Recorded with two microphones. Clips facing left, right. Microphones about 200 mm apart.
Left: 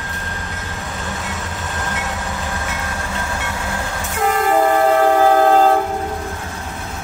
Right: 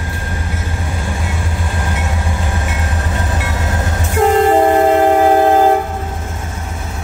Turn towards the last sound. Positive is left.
turn(degrees=-20)  # may be behind; listen again after turning